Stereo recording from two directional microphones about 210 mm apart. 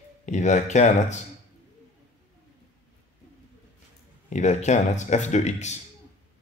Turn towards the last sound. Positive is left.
turn(degrees=35)  # may be behind; listen again after turning